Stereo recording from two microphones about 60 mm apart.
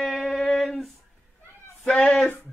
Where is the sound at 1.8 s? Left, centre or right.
Centre.